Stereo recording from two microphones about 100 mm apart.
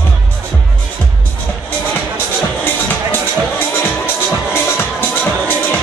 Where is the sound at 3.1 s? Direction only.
20° left (ahead or behind).